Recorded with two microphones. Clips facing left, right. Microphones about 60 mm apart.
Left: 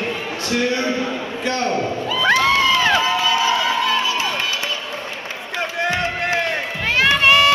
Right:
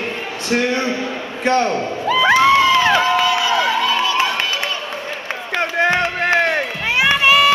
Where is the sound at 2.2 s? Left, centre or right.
Centre.